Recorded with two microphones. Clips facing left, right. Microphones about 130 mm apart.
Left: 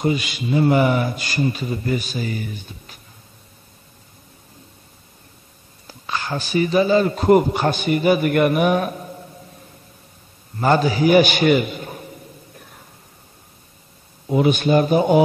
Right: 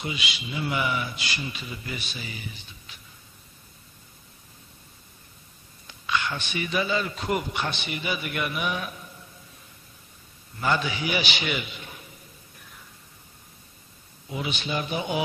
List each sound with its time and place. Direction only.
0.0 s a man's voice: 45° left (ahead or behind)
5.9 s speech: 35° left (ahead or behind)
10.6 s a sound: 40° left (ahead or behind)
14.2 s a man's voice: 50° left (ahead or behind)